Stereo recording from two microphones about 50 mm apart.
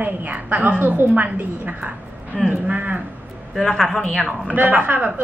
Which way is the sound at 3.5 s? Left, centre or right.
Centre.